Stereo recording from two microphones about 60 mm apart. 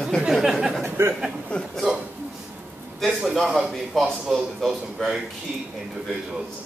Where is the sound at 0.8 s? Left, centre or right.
Right.